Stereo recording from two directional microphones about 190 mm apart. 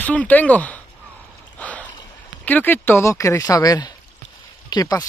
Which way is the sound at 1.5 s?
10° left (ahead or behind).